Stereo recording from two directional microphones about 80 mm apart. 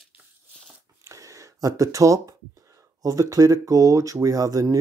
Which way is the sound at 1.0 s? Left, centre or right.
Right.